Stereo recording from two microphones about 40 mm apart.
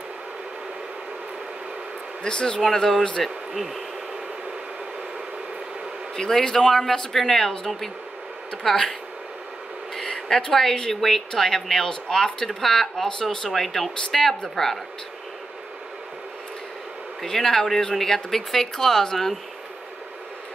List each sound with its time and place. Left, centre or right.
2.2 s speech: left
2.6 s speech: centre
6.1 s speech: centre
9.9 s speech: centre
17.2 s speech: centre